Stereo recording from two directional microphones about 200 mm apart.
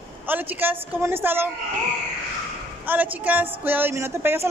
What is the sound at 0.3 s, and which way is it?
Speech, 10° right (ahead or behind).